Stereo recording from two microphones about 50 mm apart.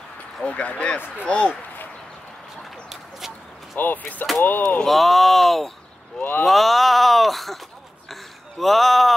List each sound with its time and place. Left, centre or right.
0.5 s speech: left
2.9 s chicken: centre
3.7 s speech: left
4.8 s speech: centre
8.1 s a sound: centre